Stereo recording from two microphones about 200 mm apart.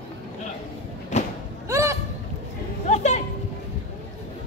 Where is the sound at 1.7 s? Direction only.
15° right (ahead or behind).